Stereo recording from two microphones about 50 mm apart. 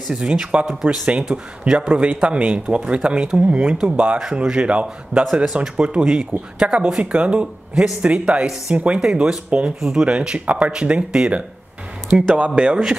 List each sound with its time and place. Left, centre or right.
0.1 s speech: centre
4.2 s speech: centre
5.2 s speech: centre
9.0 s speech: centre
12.4 s speech: right